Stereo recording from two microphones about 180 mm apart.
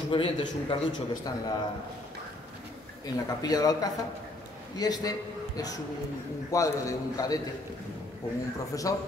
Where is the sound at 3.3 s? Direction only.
20° left (ahead or behind).